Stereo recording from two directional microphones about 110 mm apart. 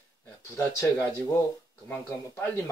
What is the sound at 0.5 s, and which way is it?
A man's voice, 25° left (ahead or behind).